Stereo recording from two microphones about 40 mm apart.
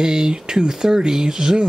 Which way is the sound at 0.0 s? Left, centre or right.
Centre.